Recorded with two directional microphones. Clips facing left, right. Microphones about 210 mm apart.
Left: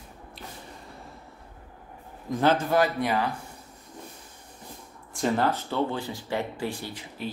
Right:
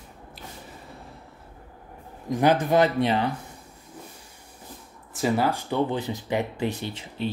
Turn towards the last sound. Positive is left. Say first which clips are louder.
# right 5 dB
turn(degrees=-25)  # may be behind; listen again after turning